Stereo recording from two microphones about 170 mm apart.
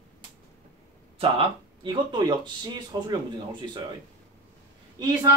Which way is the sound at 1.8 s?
25° right (ahead or behind).